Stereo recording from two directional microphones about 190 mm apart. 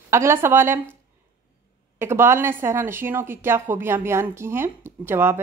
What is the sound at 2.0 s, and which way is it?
A woman's voice, 15° right (ahead or behind).